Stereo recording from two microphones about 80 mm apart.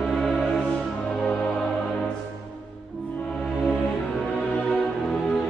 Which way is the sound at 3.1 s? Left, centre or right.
Centre.